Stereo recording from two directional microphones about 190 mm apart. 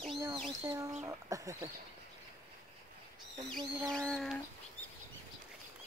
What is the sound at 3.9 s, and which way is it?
Bird, centre (ahead or behind).